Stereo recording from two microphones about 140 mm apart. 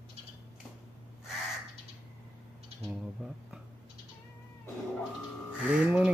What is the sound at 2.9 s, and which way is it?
Speech, 10° right (ahead or behind).